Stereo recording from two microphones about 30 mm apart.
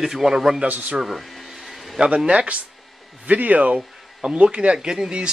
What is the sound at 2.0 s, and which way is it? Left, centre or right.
Speech, right.